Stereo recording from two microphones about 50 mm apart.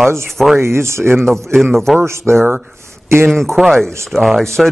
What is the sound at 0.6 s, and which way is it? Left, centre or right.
Speech, right.